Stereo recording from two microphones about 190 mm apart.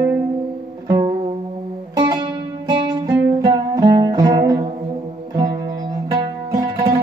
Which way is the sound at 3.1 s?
70° right (ahead or behind).